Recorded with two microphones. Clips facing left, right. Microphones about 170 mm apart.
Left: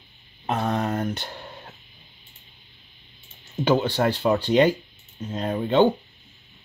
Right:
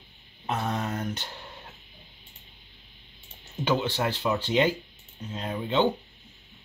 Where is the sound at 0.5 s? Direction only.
55° left (ahead or behind).